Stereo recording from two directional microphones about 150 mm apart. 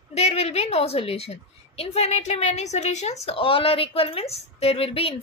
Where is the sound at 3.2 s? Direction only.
35° left (ahead or behind).